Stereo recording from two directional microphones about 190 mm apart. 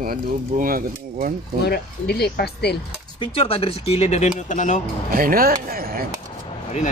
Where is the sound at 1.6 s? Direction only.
60° left (ahead or behind).